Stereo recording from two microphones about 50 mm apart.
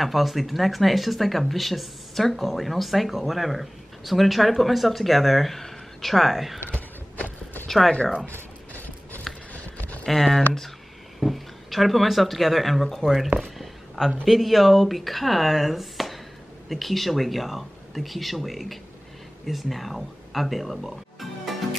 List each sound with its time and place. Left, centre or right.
0.0 s speech: centre
7.6 s speech: centre
8.7 s clip-clop: left
9.5 s a sound: left
10.0 s speech: centre
13.6 s a sound: centre
14.2 s speech: centre